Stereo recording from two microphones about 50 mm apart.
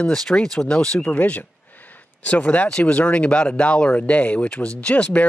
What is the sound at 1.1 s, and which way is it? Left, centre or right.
Speech, left.